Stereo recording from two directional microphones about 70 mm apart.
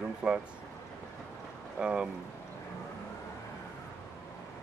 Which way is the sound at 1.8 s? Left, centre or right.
Centre.